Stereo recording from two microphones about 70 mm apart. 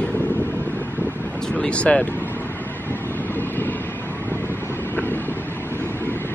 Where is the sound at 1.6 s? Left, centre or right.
Centre.